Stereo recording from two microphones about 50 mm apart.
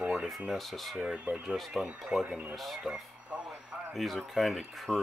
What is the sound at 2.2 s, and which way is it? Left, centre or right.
Speech, right.